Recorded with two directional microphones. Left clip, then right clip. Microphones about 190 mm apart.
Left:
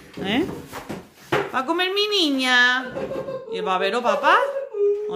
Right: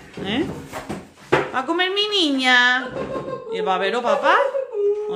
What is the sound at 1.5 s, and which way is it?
Speech, 20° left (ahead or behind).